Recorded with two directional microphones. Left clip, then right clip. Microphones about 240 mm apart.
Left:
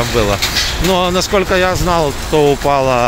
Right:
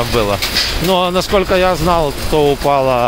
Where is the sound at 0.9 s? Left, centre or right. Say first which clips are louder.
Even; centre.